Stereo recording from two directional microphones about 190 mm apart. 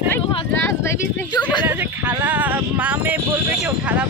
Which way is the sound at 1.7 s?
10° right (ahead or behind).